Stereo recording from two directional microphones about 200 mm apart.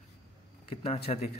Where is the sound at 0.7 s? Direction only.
30° left (ahead or behind).